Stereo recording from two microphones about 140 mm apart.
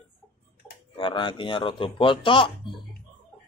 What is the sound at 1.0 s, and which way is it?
Speech, 35° left (ahead or behind).